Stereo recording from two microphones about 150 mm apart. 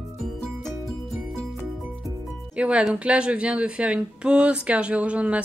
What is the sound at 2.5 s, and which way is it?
Speech, 10° right (ahead or behind).